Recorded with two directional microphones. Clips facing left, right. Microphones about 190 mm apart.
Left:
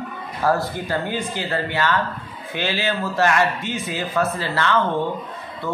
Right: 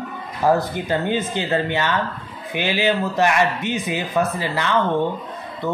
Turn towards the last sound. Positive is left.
turn(degrees=-20)  # may be behind; listen again after turning